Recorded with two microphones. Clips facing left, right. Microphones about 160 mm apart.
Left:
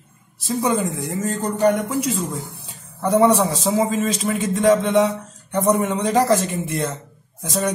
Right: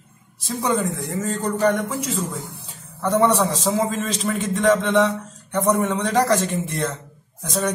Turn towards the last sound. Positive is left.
turn(degrees=10)  # may be behind; listen again after turning